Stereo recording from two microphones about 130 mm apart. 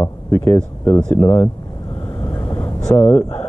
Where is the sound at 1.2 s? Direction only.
25° left (ahead or behind).